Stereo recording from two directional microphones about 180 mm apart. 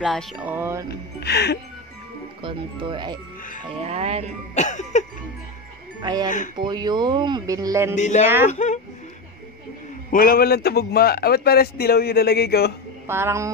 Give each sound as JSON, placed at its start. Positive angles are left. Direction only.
{"t": 0.0, "sound": "music", "side_deg": -5}
{"t": 1.2, "sound": "speech", "side_deg": 65}
{"t": 2.4, "sound": "speech", "side_deg": -30}
{"t": 4.6, "sound": "cough", "side_deg": 40}
{"t": 6.2, "sound": "speech", "side_deg": 45}
{"t": 6.6, "sound": "speech", "side_deg": -25}
{"t": 7.9, "sound": "cough", "side_deg": 40}
{"t": 10.1, "sound": "speech", "side_deg": 55}
{"t": 13.0, "sound": "speech", "side_deg": -15}